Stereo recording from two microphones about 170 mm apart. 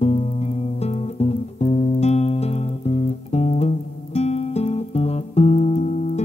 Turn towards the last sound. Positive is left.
turn(degrees=40)  # may be behind; listen again after turning